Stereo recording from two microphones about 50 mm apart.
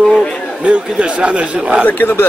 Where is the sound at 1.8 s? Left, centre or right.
Left.